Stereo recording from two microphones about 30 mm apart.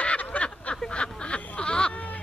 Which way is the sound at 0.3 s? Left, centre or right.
Left.